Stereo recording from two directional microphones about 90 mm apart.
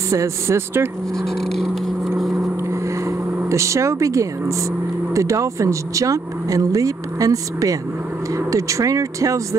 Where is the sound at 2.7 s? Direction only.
35° right (ahead or behind).